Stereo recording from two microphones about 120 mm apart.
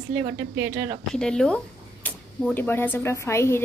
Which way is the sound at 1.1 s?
5° left (ahead or behind).